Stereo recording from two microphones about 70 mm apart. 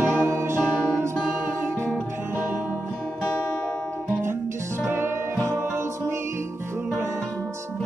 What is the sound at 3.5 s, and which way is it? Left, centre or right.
Music, centre.